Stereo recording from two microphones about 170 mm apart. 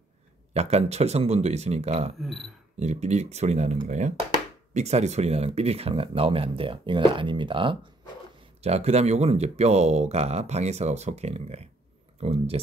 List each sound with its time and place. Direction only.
0.5 s speech: 40° right (ahead or behind)